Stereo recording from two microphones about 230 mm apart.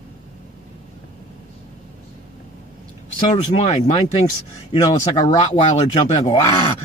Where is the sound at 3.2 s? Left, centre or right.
Left.